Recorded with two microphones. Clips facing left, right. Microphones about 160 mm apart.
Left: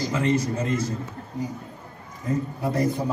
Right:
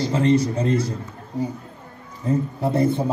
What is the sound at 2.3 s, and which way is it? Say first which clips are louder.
Speech: right 4 dB; 30° right (ahead or behind).